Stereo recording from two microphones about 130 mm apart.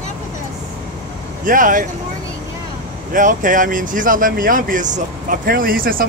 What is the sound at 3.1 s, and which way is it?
Speech, 90° right.